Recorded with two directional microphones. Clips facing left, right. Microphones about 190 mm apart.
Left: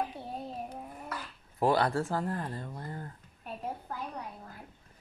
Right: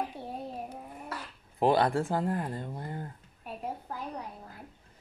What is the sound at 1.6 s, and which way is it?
Speech, 20° right (ahead or behind).